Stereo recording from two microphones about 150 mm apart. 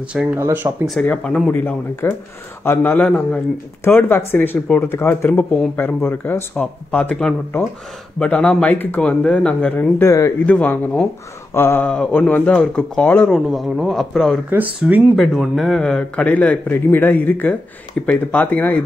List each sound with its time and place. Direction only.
0.1 s speech: 5° right (ahead or behind)
0.8 s speech: 5° left (ahead or behind)
14.5 s speech: 10° right (ahead or behind)
15.1 s speech: centre (ahead or behind)